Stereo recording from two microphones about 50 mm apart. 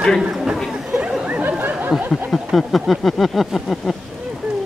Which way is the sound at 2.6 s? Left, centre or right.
Centre.